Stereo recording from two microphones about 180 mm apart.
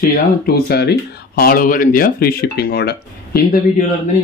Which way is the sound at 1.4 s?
50° left (ahead or behind).